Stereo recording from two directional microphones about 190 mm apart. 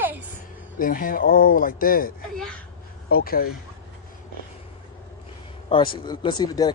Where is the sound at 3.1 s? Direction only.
50° left (ahead or behind).